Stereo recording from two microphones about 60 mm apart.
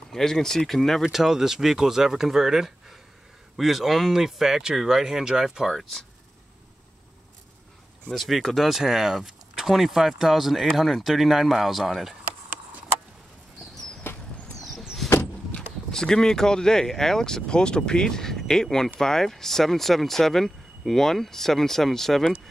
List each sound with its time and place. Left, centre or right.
0.1 s speech: centre
5.7 s speech: centre
8.1 s speech: centre
14.0 s a sound: left
14.6 s vehicle: centre
15.5 s speech: centre